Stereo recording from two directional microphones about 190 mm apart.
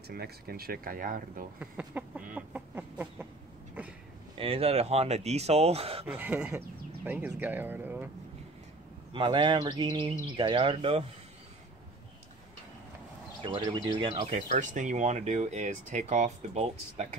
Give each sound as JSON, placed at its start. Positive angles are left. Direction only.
{"t": 0.1, "sound": "speech", "side_deg": -55}
{"t": 1.6, "sound": "speech", "side_deg": -5}
{"t": 4.4, "sound": "speech", "side_deg": -30}
{"t": 6.0, "sound": "speech", "side_deg": -10}
{"t": 9.1, "sound": "speech", "side_deg": -25}
{"t": 13.4, "sound": "speech", "side_deg": -25}
{"t": 14.3, "sound": "speech", "side_deg": -40}